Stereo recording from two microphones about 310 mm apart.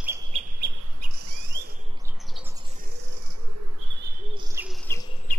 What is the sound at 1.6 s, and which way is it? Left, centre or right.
Bird, right.